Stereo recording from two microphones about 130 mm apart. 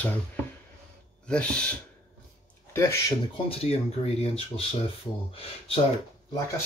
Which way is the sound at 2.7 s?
20° left (ahead or behind).